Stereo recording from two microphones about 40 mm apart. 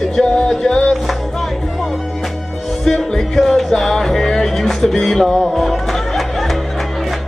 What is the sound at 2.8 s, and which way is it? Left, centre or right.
Music, centre.